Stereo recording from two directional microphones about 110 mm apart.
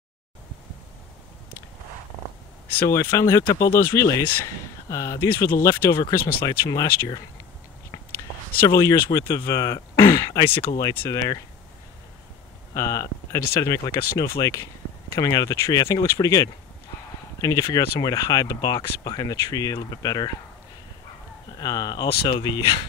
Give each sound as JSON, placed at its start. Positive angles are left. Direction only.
{"t": 2.8, "sound": "speech", "side_deg": 25}
{"t": 8.6, "sound": "speech", "side_deg": 30}
{"t": 12.7, "sound": "speech", "side_deg": 30}
{"t": 21.5, "sound": "speech", "side_deg": 35}